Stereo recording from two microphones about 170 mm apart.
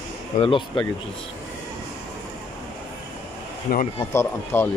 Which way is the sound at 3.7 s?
55° left (ahead or behind).